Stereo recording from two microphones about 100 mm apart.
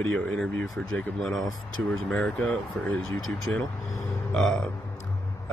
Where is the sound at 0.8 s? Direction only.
5° left (ahead or behind).